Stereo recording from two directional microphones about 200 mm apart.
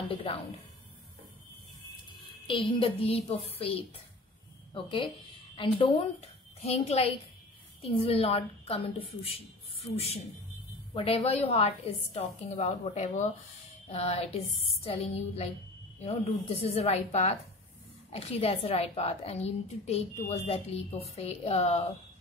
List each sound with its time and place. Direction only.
0.1 s speech: 30° left (ahead or behind)
2.4 s a woman's voice: 25° left (ahead or behind)